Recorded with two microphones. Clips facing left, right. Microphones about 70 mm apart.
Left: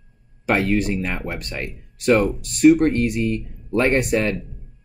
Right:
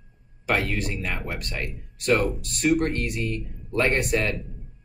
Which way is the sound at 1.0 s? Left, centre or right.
Left.